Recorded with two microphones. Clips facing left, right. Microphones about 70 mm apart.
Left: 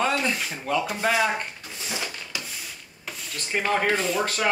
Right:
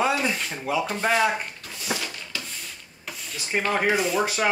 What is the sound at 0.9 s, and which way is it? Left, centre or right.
Speech, centre.